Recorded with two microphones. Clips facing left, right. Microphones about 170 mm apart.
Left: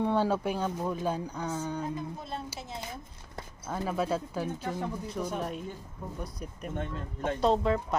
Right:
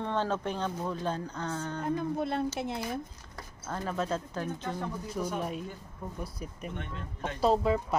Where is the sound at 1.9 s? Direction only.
65° right (ahead or behind).